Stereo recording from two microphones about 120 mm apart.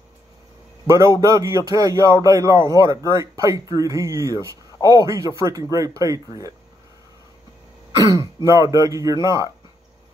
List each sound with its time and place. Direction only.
0.8 s speech: 25° right (ahead or behind)
8.5 s speech: 25° right (ahead or behind)